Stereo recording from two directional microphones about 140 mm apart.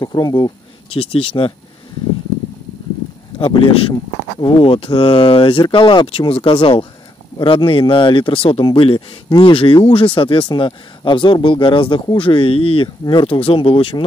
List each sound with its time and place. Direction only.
0.0 s speech: 30° left (ahead or behind)
0.8 s speech: 40° left (ahead or behind)
3.3 s speech: 40° left (ahead or behind)